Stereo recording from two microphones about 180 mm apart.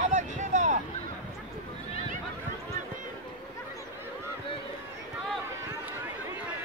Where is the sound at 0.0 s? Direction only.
40° right (ahead or behind).